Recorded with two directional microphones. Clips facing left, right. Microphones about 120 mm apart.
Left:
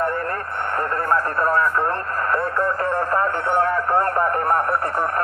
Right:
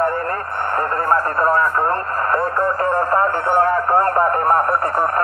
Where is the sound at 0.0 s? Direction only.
50° right (ahead or behind).